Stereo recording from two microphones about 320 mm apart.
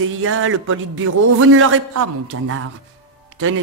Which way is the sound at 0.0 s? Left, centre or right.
Right.